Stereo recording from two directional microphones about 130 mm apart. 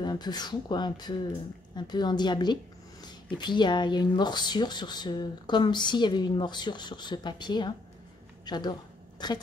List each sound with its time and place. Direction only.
0.0 s a woman's voice: 35° left (ahead or behind)